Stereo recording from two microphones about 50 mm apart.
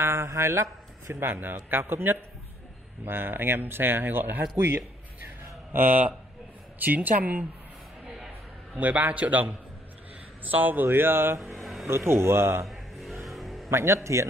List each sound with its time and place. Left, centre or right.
0.0 s speech: right
1.2 s a man's voice: right
8.7 s a man's voice: right
10.5 s a man's voice: right
11.6 s a sound: centre
11.9 s a man's voice: right
12.6 s a sound: centre
13.2 s music: centre
13.7 s a man's voice: right